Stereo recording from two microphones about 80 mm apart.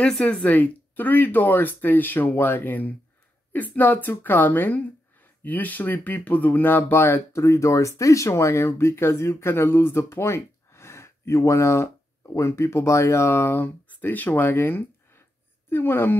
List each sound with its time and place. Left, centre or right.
0.0 s speech: centre
0.5 s speech: left